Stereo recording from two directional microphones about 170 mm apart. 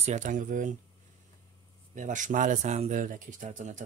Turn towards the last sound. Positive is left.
turn(degrees=-45)  # may be behind; listen again after turning